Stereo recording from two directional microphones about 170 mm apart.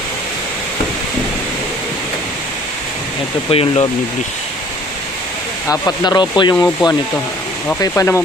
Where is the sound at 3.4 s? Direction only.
35° left (ahead or behind).